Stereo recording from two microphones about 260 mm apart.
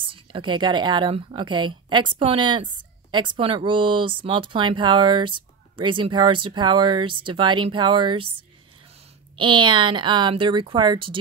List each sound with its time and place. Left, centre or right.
0.0 s a woman's voice: centre
9.4 s speech: centre